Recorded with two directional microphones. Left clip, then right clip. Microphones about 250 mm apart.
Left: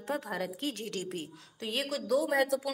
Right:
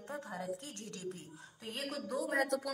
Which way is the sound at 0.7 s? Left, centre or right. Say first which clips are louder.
Left 9 dB; left.